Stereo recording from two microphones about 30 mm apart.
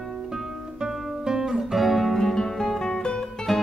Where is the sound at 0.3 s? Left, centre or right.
Centre.